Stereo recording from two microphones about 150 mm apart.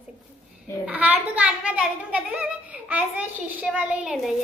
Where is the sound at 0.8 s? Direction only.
10° right (ahead or behind).